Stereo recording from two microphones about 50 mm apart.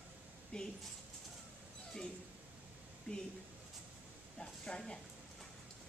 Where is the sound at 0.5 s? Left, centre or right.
Centre.